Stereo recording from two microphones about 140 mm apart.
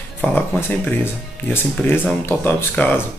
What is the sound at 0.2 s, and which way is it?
Speech, 15° left (ahead or behind).